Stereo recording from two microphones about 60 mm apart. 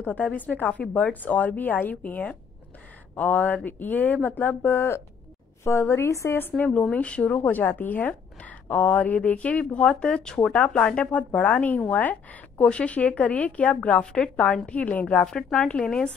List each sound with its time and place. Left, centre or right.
0.0 s a woman's voice: left
6.6 s speech: left
6.9 s a woman's voice: left
7.3 s a woman's voice: left
15.5 s speech: centre